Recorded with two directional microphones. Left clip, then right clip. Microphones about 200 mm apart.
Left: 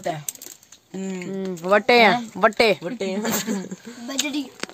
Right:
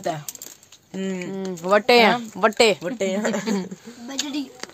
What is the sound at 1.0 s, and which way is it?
Speech, 45° right (ahead or behind).